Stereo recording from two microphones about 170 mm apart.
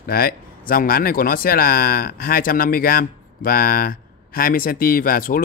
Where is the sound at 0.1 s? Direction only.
60° left (ahead or behind).